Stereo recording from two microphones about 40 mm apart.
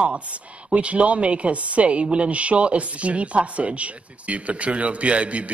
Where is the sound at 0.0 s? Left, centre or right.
Right.